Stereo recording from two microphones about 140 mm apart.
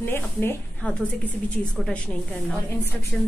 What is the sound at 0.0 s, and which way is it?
Speech, 15° left (ahead or behind).